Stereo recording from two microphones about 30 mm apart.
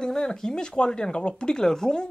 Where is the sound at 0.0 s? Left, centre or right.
Left.